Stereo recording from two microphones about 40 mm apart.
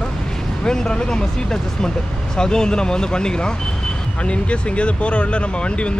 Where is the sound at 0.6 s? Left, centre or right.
Centre.